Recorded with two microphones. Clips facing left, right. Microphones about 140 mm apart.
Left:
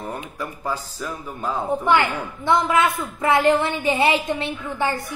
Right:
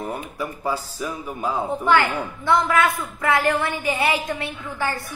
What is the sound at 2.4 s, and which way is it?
A woman's voice, 20° left (ahead or behind).